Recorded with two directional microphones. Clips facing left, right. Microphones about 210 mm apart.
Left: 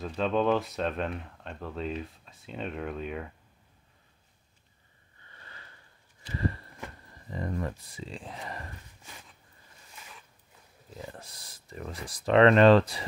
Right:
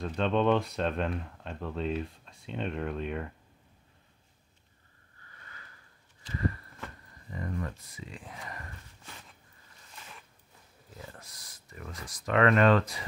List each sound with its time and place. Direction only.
0.0 s speech: centre (ahead or behind)
5.2 s sniff: 30° left (ahead or behind)
6.3 s a sound: 30° left (ahead or behind)
7.2 s speech: 30° left (ahead or behind)
11.1 s speech: 30° left (ahead or behind)